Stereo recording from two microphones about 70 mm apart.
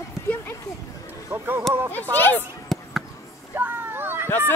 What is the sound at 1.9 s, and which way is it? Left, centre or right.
Speech, left.